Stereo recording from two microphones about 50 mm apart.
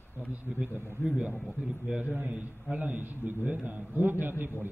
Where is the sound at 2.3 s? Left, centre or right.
Right.